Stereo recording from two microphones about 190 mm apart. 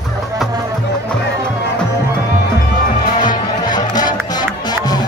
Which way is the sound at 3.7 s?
20° left (ahead or behind).